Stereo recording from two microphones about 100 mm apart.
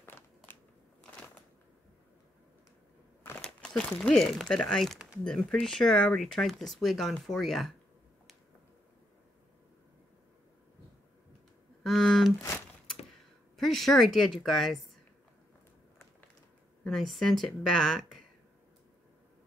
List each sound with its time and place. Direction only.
0.0 s crackle: 25° left (ahead or behind)
3.3 s speech: 5° left (ahead or behind)
11.8 s a sound: 5° left (ahead or behind)
13.6 s speech: centre (ahead or behind)
16.8 s speech: centre (ahead or behind)